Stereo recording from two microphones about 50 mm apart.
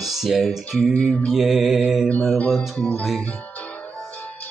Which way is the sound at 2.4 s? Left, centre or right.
Centre.